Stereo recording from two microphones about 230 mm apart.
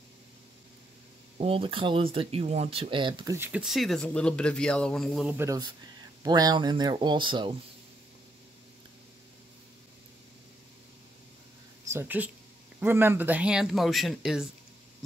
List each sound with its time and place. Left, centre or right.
1.4 s speech: right; by 5.3 s centre
5.4 s speech: centre
11.9 s speech: centre